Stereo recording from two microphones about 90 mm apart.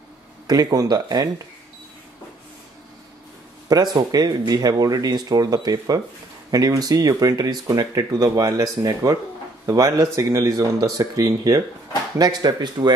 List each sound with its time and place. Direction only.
0.5 s speech: 45° right (ahead or behind)
3.6 s speech: 45° right (ahead or behind)